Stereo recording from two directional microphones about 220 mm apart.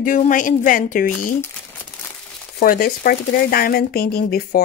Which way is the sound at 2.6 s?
40° left (ahead or behind).